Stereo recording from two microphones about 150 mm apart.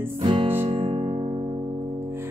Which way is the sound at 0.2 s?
35° right (ahead or behind).